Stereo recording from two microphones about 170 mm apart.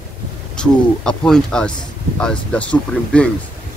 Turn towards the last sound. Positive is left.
turn(degrees=5)  # may be behind; listen again after turning